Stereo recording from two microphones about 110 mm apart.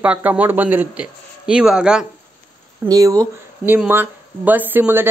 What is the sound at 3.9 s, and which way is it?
Speech, 15° right (ahead or behind).